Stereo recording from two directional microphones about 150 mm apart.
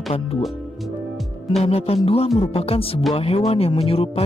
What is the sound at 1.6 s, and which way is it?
Speech, 40° left (ahead or behind).